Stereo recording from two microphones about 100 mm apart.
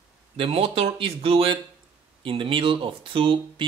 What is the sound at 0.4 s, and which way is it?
Speech, 70° right (ahead or behind).